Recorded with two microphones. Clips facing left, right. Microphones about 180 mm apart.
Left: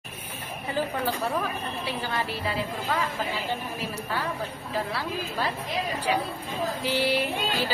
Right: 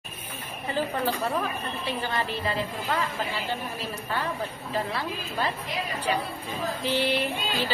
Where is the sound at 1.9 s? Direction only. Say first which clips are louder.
Right 2 dB; 10° left (ahead or behind).